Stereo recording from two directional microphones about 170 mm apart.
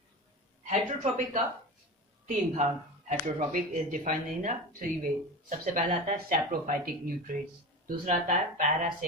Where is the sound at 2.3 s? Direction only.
45° right (ahead or behind).